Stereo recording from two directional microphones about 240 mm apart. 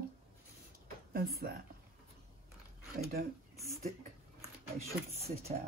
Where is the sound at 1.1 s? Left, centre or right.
Right.